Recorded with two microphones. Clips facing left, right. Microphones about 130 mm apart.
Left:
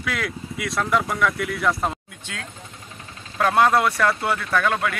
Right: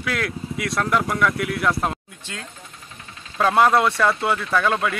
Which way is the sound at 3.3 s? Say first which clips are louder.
Right 1 dB; 10° right (ahead or behind).